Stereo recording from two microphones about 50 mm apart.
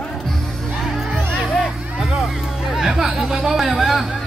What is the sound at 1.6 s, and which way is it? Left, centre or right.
Vehicle, centre.